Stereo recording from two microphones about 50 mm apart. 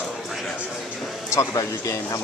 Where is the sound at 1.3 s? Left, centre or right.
Left.